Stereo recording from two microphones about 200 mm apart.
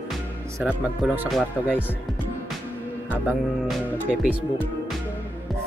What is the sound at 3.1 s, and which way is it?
Speech, 5° right (ahead or behind).